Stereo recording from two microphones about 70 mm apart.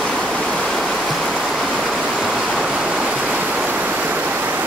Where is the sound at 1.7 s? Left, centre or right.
Centre; by 4.5 s right.